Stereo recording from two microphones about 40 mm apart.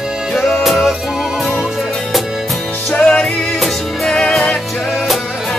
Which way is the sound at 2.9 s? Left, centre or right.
Left.